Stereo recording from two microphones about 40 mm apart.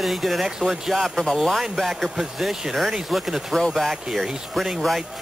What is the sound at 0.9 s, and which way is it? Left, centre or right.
Speech, centre.